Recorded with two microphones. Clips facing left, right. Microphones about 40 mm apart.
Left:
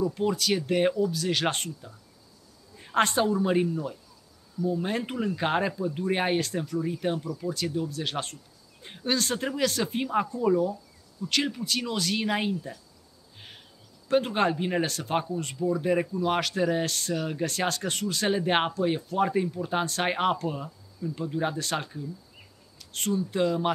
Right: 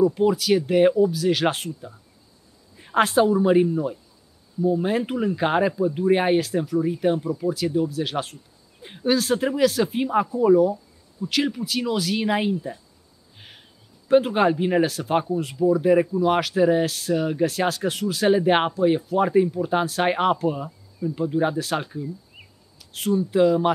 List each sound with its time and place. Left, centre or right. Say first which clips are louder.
0.0 s a woman's voice: right 7 dB; centre
3.6 s speech: right 6 dB; centre